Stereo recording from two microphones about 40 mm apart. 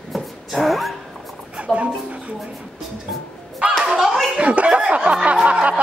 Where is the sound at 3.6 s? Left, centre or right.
Right.